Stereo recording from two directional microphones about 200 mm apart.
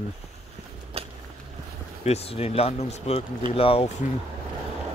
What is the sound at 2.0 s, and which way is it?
Speech, 30° left (ahead or behind).